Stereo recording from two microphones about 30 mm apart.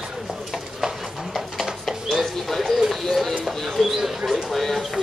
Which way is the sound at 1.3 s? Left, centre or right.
Centre.